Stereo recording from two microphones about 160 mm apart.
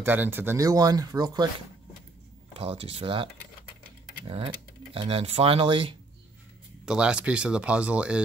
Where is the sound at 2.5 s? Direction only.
40° right (ahead or behind).